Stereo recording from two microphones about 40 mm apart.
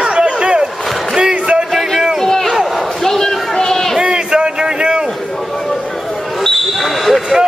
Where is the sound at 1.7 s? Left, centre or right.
Centre.